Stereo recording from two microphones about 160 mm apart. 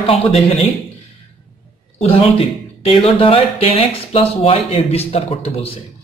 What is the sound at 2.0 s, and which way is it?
Speech, 35° left (ahead or behind).